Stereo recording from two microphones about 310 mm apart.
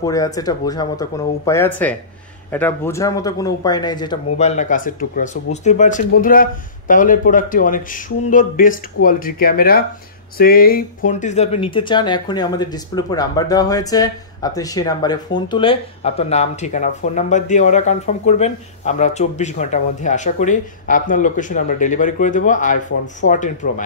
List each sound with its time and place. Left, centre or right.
0.0 s speech: centre